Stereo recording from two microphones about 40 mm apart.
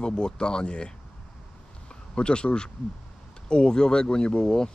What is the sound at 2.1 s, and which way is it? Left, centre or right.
Speech, left.